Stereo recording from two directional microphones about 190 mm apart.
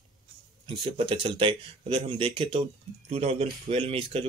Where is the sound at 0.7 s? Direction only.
30° right (ahead or behind).